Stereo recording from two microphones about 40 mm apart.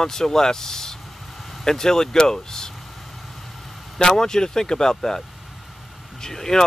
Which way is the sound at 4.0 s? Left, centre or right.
Centre.